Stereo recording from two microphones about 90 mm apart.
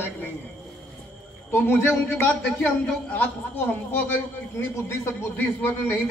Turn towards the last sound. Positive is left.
turn(degrees=20)  # may be behind; listen again after turning